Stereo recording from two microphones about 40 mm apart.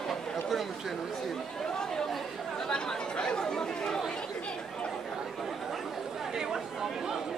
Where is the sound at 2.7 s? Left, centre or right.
Left.